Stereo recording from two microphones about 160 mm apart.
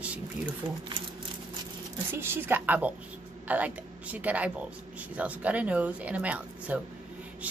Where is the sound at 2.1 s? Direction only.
15° right (ahead or behind).